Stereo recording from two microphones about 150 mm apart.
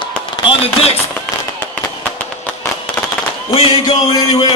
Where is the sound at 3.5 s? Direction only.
40° left (ahead or behind).